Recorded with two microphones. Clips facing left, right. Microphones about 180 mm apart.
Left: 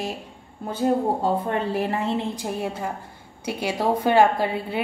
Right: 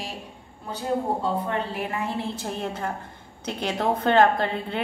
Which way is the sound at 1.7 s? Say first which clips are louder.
Left 5 dB; 40° left (ahead or behind).